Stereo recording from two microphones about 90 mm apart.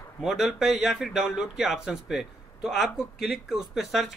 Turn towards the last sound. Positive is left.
turn(degrees=-5)  # may be behind; listen again after turning